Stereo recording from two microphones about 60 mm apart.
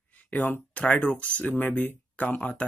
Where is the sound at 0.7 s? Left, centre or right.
Left.